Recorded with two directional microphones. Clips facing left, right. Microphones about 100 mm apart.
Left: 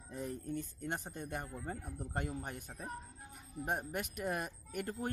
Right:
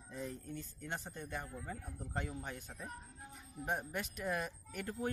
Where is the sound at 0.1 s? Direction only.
50° left (ahead or behind).